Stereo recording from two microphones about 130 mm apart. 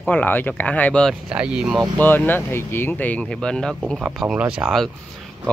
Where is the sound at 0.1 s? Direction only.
15° left (ahead or behind).